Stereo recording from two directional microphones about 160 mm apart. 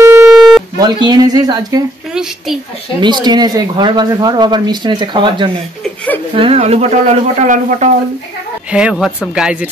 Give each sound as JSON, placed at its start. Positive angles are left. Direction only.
{"t": 0.1, "sound": "busy signal", "side_deg": -5}
{"t": 0.7, "sound": "speech", "side_deg": -25}
{"t": 2.1, "sound": "a woman's voice", "side_deg": 0}
{"t": 3.0, "sound": "speech", "side_deg": -25}
{"t": 8.7, "sound": "a woman's voice", "side_deg": -5}